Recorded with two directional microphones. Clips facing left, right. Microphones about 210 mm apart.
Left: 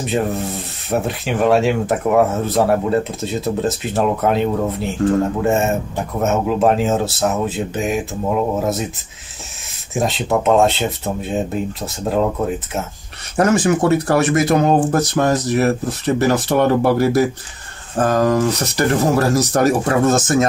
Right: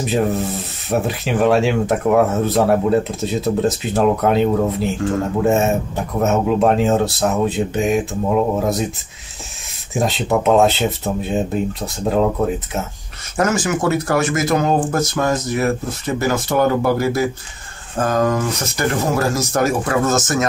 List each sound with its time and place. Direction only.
0.0 s speech: centre (ahead or behind)
9.9 s speech: centre (ahead or behind)
13.4 s speech: 30° left (ahead or behind)